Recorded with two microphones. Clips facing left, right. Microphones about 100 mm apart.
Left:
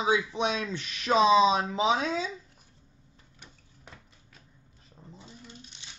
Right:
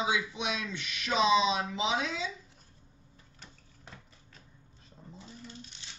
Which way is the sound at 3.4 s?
10° left (ahead or behind).